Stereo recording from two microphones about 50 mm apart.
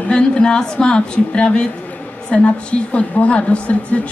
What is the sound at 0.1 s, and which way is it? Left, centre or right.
A woman's voice, centre.